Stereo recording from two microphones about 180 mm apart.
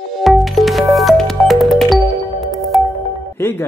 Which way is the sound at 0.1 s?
Centre (ahead or behind).